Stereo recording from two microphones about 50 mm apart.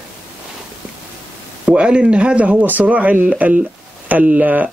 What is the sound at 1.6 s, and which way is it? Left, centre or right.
A man's voice, right.